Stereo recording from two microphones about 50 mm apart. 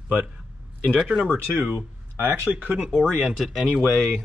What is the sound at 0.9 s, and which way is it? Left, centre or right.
Speech, centre.